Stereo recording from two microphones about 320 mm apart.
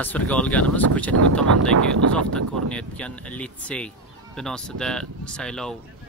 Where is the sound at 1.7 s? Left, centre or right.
Right.